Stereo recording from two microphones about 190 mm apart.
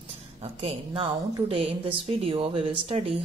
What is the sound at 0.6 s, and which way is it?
Speech, 30° right (ahead or behind).